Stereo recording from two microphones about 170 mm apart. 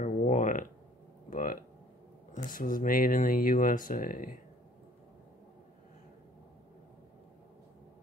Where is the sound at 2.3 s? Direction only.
50° left (ahead or behind).